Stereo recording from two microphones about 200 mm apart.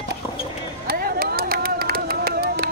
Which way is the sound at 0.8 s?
50° right (ahead or behind).